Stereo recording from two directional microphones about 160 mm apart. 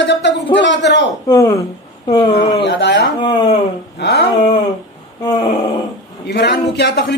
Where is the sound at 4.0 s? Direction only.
90° left.